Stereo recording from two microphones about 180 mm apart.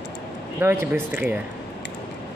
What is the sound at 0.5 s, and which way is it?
Speech, 15° right (ahead or behind).